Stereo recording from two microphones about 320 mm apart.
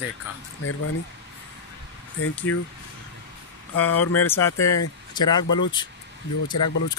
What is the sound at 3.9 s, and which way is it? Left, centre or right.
Speech, left.